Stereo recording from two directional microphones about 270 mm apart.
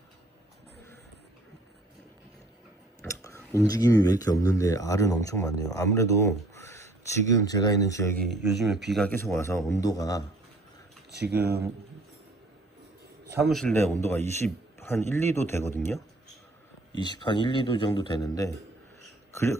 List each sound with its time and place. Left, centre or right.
3.0 s speech: centre
8.3 s a man's voice: centre
13.5 s a man's voice: centre